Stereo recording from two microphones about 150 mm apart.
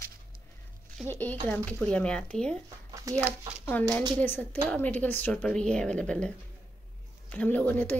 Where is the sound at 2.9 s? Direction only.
20° right (ahead or behind).